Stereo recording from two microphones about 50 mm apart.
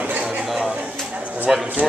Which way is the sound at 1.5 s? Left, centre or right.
Centre.